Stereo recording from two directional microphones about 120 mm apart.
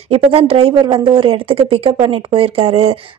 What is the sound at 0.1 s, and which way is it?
Speech, 50° right (ahead or behind).